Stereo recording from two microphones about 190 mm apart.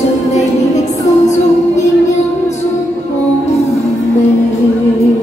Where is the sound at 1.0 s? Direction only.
40° left (ahead or behind).